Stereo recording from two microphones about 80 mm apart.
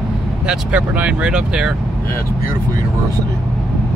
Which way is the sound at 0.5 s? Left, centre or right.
Centre.